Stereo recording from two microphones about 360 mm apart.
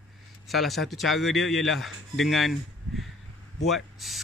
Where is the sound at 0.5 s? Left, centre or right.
Centre.